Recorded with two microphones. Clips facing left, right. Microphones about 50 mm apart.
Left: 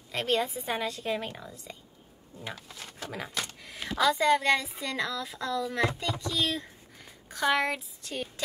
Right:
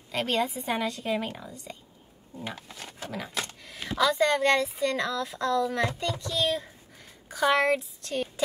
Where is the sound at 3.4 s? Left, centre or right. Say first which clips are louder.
Even; centre.